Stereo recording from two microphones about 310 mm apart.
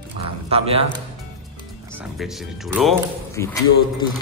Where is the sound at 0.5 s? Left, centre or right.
Centre.